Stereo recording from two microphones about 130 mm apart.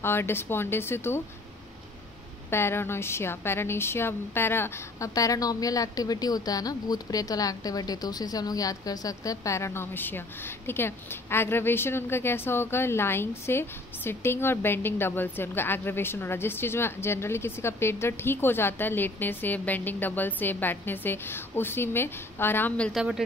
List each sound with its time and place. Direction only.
0.0 s speech: 20° left (ahead or behind)
2.5 s a woman's voice: 20° left (ahead or behind)
22.9 s a man's voice: centre (ahead or behind)